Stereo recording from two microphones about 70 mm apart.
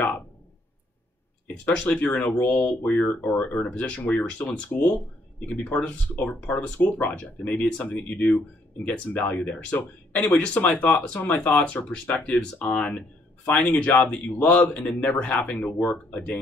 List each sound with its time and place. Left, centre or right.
1.9 s speech: left
9.8 s speech: left
10.3 s speech: centre